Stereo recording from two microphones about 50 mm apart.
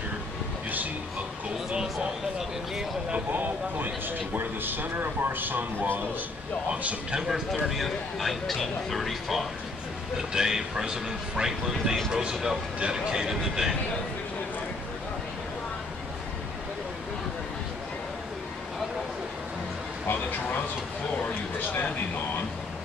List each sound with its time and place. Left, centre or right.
2.3 s a sound: centre
3.3 s speech: right
6.7 s speech: right
7.2 s speech: centre
10.1 s speech: centre